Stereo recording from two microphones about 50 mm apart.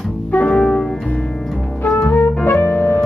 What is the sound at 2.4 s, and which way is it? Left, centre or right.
Music, left.